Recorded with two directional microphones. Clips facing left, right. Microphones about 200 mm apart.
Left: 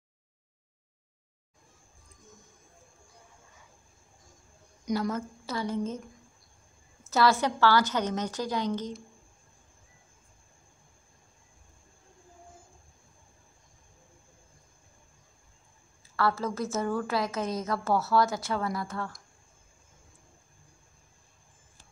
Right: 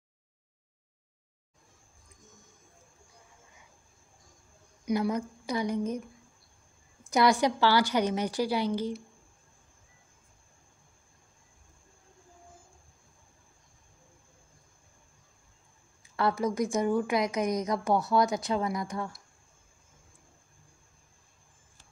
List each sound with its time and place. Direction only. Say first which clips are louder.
4.8 s a woman's voice: right 2 dB; 15° right (ahead or behind)
16.2 s a woman's voice: right 1 dB; 15° right (ahead or behind)